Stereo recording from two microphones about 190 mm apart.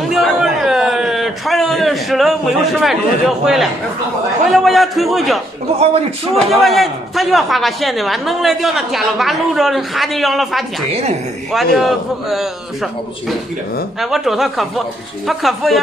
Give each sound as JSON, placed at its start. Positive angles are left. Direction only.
{"t": 0.1, "sound": "a sound", "side_deg": 0}
{"t": 4.5, "sound": "a man's voice", "side_deg": 0}
{"t": 5.8, "sound": "speech", "side_deg": -30}
{"t": 6.4, "sound": "a man's voice", "side_deg": 0}
{"t": 12.3, "sound": "a man's voice", "side_deg": 0}